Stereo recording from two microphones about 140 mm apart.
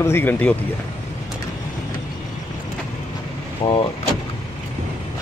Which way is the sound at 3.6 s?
40° left (ahead or behind).